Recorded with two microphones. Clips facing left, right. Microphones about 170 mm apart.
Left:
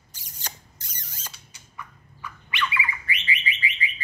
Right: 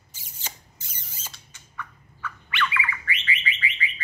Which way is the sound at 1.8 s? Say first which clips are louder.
Right 2 dB; 15° left (ahead or behind).